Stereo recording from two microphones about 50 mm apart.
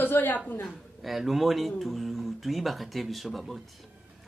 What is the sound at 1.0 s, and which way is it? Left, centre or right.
Speech, centre.